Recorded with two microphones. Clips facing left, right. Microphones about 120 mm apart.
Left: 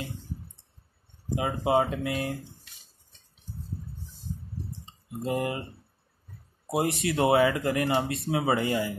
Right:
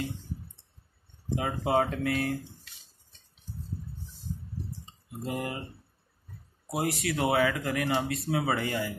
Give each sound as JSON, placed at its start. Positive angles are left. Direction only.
{"t": 1.4, "sound": "speech", "side_deg": 15}
{"t": 5.2, "sound": "speech", "side_deg": 20}
{"t": 6.7, "sound": "speech", "side_deg": 25}